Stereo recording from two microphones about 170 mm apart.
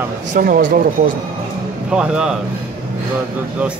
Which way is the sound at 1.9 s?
5° right (ahead or behind).